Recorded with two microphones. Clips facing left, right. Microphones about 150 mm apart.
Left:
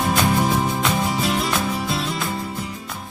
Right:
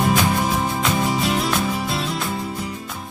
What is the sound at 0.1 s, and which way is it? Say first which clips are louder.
Music: even; centre (ahead or behind).